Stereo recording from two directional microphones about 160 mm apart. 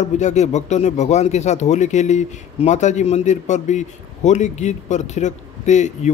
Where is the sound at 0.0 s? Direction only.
45° left (ahead or behind).